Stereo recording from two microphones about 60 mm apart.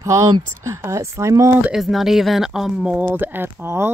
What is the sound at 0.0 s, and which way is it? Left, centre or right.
Speech, right.